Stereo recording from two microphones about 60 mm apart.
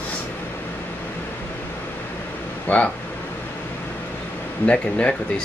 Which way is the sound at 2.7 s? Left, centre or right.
Left.